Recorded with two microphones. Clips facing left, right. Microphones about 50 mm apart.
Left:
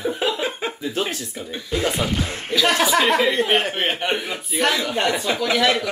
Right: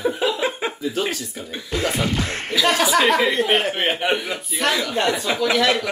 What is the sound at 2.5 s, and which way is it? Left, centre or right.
Speech, centre.